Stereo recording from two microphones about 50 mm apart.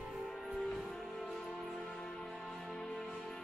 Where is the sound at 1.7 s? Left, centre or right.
Centre.